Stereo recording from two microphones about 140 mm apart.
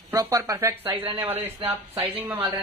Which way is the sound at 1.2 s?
15° right (ahead or behind).